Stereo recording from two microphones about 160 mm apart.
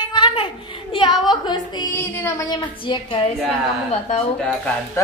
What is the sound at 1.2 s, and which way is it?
Speech, 25° left (ahead or behind).